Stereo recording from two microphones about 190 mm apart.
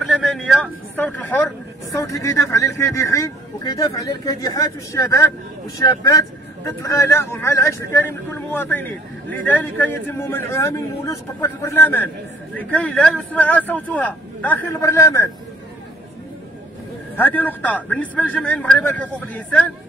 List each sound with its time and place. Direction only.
0.0 s a man's voice: 5° left (ahead or behind)
17.2 s speech: 10° left (ahead or behind)